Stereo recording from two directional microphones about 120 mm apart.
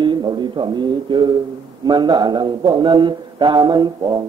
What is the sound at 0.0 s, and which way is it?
Speech, 40° right (ahead or behind).